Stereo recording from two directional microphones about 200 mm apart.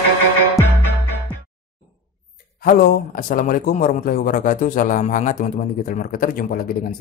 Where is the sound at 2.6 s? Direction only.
45° left (ahead or behind).